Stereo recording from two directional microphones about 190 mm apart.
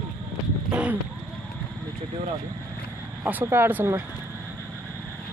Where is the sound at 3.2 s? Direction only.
10° right (ahead or behind).